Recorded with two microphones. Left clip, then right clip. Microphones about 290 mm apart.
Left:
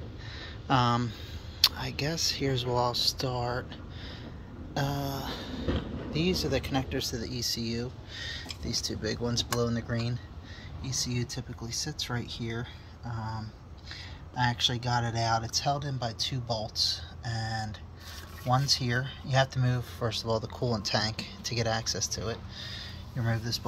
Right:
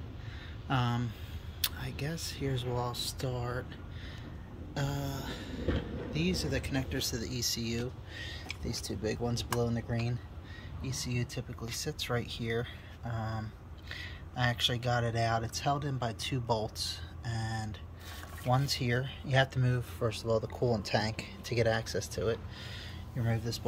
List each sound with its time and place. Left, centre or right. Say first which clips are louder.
0.7 s speech: left 8 dB; centre
4.7 s speech: left 5 dB; centre
13.8 s speech: right 1 dB; centre